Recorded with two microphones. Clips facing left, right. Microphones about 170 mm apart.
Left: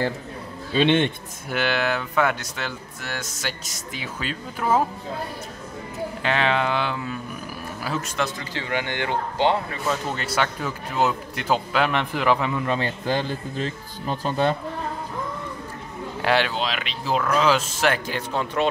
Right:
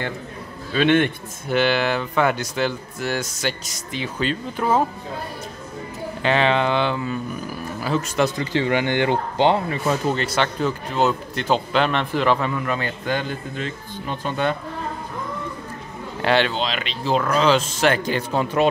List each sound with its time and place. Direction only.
0.7 s a man's voice: 25° left (ahead or behind)
1.5 s speech: centre (ahead or behind)
6.2 s speech: centre (ahead or behind)
8.2 s speech: 10° right (ahead or behind)
8.5 s speech: 25° right (ahead or behind)
10.1 s speech: 5° left (ahead or behind)
12.6 s speech: 30° left (ahead or behind)
16.2 s speech: 5° left (ahead or behind)
18.4 s speech: 10° right (ahead or behind)